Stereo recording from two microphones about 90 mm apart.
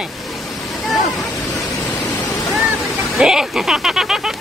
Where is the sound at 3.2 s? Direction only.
5° right (ahead or behind).